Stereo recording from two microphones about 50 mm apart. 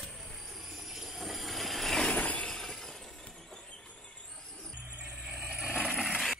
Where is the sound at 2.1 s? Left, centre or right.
Left.